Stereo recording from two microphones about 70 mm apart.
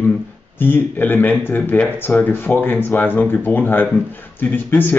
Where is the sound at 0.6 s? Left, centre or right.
Left.